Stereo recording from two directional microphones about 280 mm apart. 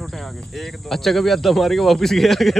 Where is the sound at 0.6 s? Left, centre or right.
Centre.